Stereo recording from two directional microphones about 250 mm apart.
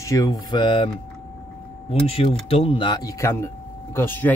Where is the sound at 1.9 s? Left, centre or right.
Left.